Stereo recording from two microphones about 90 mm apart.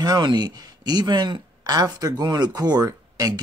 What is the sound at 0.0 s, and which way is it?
Speech, 50° right (ahead or behind).